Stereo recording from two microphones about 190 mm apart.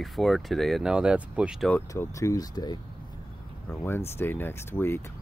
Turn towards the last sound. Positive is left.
turn(degrees=10)  # may be behind; listen again after turning